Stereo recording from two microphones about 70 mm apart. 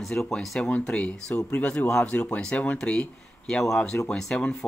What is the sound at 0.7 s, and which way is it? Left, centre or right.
Speech, centre.